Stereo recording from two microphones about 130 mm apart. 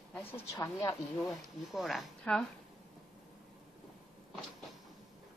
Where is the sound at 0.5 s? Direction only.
30° left (ahead or behind).